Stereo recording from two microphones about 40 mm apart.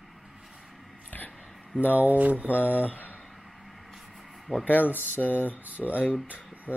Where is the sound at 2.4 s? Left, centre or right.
Left.